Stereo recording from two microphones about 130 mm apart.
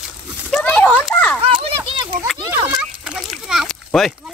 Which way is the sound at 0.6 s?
15° left (ahead or behind).